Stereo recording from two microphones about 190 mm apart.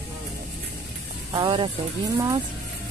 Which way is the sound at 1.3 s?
20° right (ahead or behind).